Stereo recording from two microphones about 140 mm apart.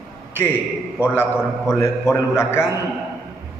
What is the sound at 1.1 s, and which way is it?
A man's voice, 15° left (ahead or behind).